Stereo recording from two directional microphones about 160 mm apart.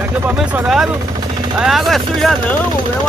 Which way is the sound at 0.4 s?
Centre (ahead or behind).